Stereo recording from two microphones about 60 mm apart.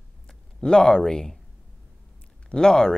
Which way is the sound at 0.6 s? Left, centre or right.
Centre.